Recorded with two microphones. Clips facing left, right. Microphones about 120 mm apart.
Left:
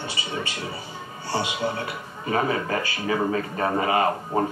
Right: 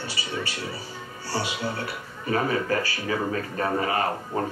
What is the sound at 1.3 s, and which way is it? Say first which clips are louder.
A man's voice: left 3 dB; 20° left (ahead or behind).